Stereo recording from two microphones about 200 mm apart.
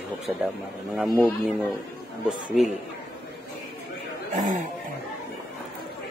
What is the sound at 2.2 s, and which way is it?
Speech, 5° right (ahead or behind).